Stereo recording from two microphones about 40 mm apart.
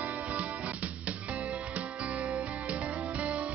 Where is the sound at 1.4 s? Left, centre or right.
Right.